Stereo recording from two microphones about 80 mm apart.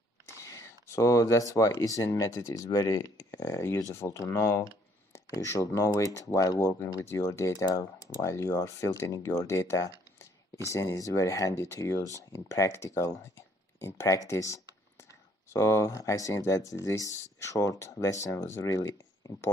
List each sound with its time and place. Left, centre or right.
0.3 s speech: left